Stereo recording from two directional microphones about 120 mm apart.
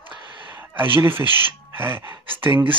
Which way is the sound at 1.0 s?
20° right (ahead or behind).